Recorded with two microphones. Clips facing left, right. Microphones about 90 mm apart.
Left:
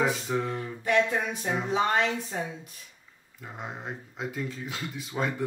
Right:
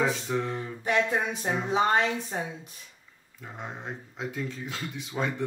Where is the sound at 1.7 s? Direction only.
25° right (ahead or behind).